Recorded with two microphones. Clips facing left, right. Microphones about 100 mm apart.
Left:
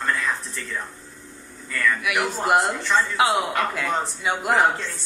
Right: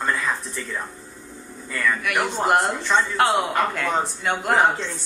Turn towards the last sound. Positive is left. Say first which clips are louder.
# right 1 dB
turn(degrees=0)  # may be behind; listen again after turning